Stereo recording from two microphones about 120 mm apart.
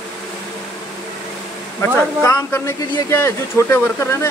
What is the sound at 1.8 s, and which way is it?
Speech, 20° left (ahead or behind).